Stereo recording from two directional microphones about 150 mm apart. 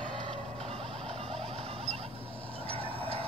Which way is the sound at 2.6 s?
40° right (ahead or behind).